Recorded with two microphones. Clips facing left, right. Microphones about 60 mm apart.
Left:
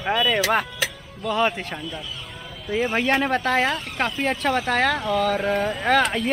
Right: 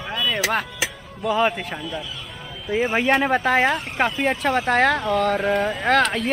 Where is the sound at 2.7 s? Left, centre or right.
Centre.